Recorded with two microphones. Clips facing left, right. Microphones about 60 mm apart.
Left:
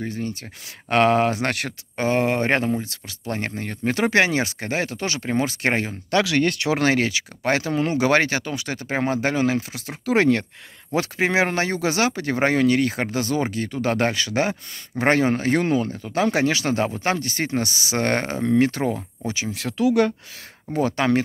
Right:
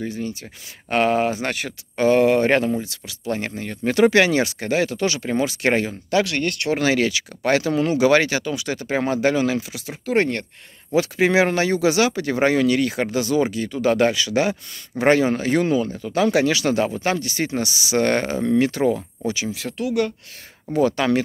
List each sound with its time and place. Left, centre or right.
0.1 s speech: left
2.0 s speech: left
2.8 s speech: left
3.8 s speech: left
6.8 s speech: left
7.1 s speech: left
11.0 s speech: left
18.9 s speech: left
20.7 s speech: left